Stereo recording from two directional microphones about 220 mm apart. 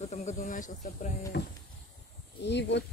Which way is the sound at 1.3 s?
50° left (ahead or behind).